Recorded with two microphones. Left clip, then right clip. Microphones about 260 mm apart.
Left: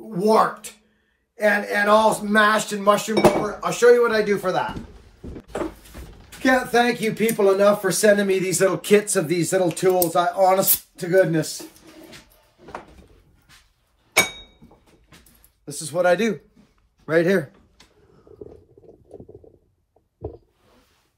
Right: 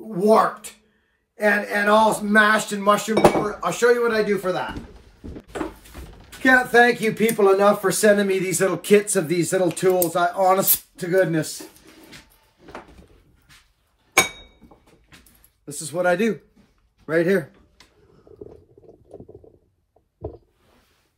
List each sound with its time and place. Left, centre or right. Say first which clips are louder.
0.1 s speech: right 1 dB; centre
4.4 s a man's voice: left 2 dB; centre
6.4 s speech: right 3 dB; centre
15.6 s a man's voice: left 2 dB; centre; by 17.5 s left